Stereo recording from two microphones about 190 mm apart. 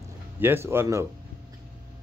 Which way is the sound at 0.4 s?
10° right (ahead or behind).